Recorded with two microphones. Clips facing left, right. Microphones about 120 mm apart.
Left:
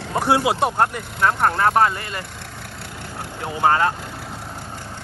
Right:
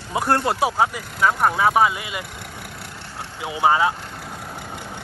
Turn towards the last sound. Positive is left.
turn(degrees=-10)  # may be behind; listen again after turning